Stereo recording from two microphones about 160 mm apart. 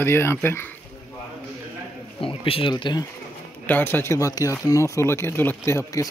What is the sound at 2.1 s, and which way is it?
Speech, 35° left (ahead or behind).